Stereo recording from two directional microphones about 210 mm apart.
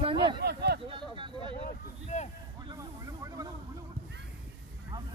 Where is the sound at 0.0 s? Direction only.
25° right (ahead or behind).